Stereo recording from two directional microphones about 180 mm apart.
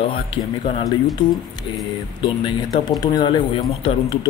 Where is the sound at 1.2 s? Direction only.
25° left (ahead or behind).